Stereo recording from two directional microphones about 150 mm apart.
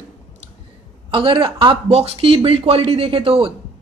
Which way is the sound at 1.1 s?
35° right (ahead or behind).